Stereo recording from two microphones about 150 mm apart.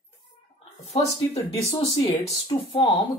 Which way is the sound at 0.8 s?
45° left (ahead or behind).